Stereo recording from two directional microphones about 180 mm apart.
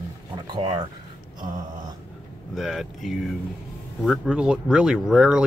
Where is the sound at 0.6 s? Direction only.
25° right (ahead or behind).